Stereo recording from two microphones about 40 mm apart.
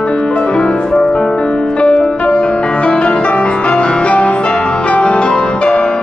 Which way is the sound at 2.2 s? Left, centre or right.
Left.